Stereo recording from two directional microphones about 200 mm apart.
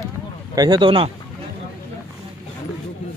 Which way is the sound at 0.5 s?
20° right (ahead or behind).